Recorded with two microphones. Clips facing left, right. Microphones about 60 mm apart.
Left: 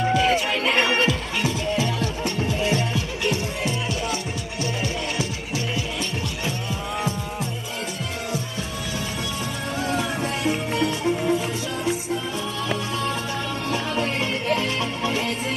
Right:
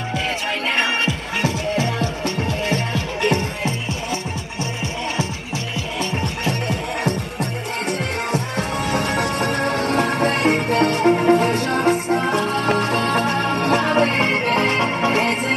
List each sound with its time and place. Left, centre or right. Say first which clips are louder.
0.7 s music: left 1 dB; right
1.4 s music: right 4 dB; right
6.4 s music: right 5 dB; right
8.3 s music: right 7 dB; right